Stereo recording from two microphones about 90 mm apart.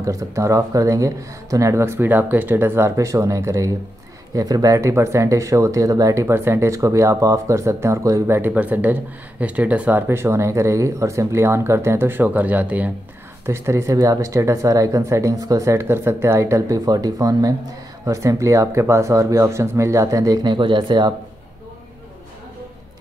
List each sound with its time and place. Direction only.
0.0 s speech: 35° right (ahead or behind)
8.4 s speech: 20° right (ahead or behind)
13.5 s speech: 30° right (ahead or behind)
20.4 s speech: 65° right (ahead or behind)